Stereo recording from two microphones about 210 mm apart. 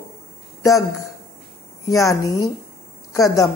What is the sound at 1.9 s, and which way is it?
Speech, 15° left (ahead or behind).